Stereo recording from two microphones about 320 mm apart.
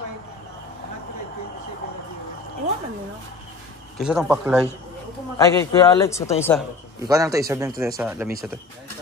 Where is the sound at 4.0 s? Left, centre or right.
Centre.